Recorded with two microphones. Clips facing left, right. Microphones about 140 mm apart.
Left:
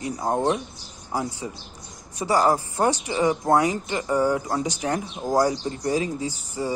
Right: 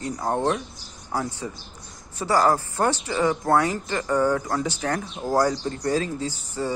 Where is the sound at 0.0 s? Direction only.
15° left (ahead or behind).